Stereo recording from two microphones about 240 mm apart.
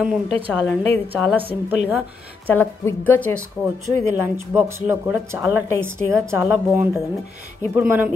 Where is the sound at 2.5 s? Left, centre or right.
Centre.